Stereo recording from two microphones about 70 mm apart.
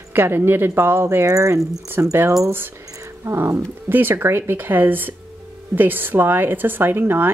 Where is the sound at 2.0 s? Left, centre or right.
Right.